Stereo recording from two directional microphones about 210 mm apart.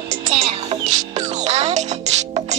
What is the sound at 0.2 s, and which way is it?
Music, 30° right (ahead or behind).